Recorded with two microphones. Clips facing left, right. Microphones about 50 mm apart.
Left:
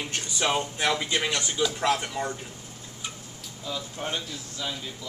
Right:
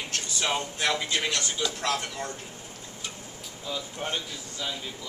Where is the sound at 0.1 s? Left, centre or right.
Centre.